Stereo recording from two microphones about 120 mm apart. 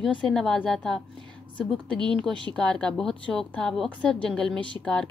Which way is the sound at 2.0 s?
40° right (ahead or behind).